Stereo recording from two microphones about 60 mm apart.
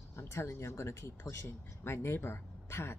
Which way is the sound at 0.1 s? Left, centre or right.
Left.